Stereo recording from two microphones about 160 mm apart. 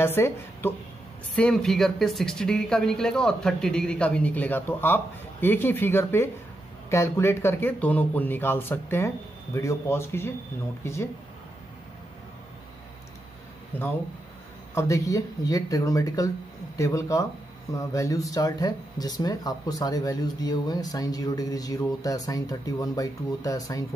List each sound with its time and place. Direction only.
0.0 s speech: 15° left (ahead or behind)
13.7 s speech: 10° left (ahead or behind)